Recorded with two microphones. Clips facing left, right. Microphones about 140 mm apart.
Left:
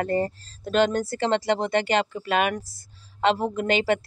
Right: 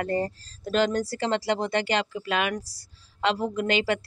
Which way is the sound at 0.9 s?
55° left (ahead or behind).